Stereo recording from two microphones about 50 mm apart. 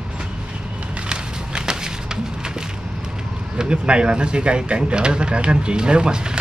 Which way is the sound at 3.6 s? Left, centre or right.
Centre.